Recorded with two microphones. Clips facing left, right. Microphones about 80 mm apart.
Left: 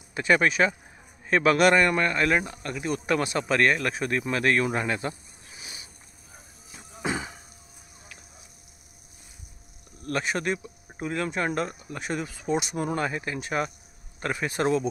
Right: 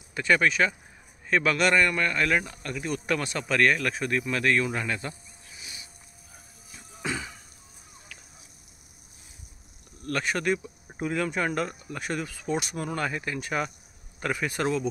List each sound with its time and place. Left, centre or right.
0.1 s speech: centre
2.7 s speech: centre; by 5.9 s left
7.0 s music: left
10.0 s speech: centre